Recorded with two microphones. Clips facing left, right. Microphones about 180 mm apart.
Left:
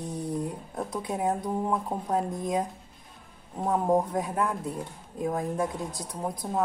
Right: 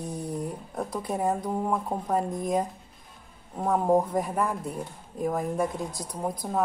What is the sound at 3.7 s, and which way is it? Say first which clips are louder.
A woman's voice: right 2 dB; 5° right (ahead or behind).